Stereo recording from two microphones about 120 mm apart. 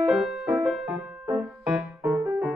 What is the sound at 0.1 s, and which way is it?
Music, 5° right (ahead or behind).